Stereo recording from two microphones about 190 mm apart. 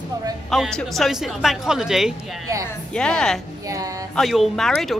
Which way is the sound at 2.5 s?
15° right (ahead or behind).